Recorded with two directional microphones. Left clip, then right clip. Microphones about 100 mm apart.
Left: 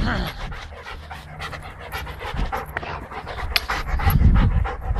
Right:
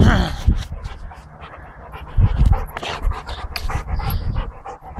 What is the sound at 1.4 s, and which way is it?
Pant, 35° left (ahead or behind).